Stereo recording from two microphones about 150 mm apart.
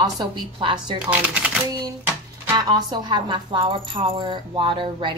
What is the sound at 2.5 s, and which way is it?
A woman's voice, 30° right (ahead or behind).